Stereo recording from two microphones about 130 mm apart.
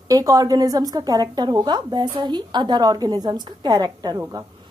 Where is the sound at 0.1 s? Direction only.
25° right (ahead or behind).